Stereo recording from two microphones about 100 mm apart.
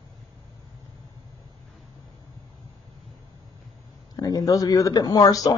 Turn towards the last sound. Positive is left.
turn(degrees=40)  # may be behind; listen again after turning